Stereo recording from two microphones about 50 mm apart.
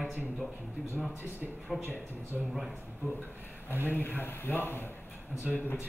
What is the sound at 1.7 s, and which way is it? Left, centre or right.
Speech, centre.